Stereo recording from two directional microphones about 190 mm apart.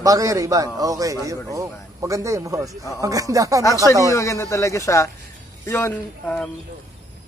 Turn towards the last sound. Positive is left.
turn(degrees=10)  # may be behind; listen again after turning